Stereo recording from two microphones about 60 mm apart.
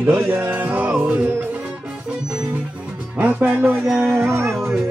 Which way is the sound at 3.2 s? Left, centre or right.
Right.